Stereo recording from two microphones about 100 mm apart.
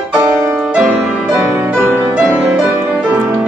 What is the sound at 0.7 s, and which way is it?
Music, 10° right (ahead or behind).